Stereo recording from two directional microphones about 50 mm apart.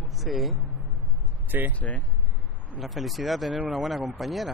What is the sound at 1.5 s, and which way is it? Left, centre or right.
Speech, right.